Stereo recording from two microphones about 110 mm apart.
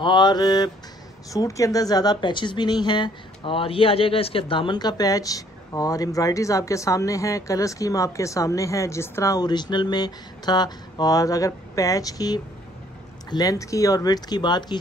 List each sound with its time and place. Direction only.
0.0 s speech: 45° left (ahead or behind)